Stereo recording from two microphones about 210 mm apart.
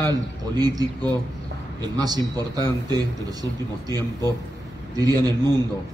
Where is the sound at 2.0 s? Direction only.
20° right (ahead or behind).